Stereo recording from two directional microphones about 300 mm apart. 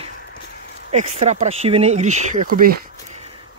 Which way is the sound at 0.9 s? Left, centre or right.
Right.